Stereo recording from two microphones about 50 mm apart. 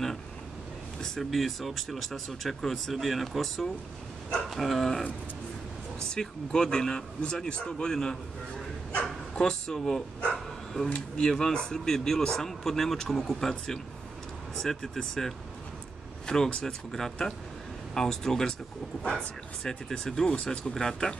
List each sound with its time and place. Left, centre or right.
1.0 s speech: centre
6.1 s speech: centre
10.3 s bow-wow: centre
11.1 s speech: centre
19.6 s speech: centre